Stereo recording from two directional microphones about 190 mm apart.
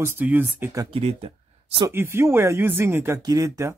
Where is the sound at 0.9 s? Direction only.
30° right (ahead or behind).